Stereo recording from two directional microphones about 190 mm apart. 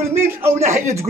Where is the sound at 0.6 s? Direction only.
15° right (ahead or behind).